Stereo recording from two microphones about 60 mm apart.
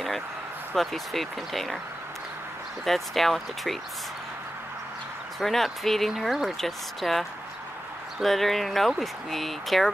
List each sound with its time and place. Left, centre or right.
0.7 s speech: centre
2.8 s speech: centre
5.4 s speech: centre